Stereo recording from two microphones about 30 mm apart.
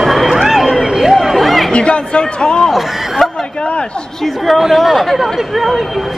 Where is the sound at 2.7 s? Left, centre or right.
Centre.